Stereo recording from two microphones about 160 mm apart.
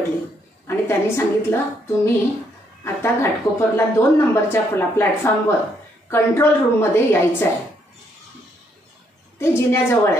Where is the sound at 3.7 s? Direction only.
15° left (ahead or behind).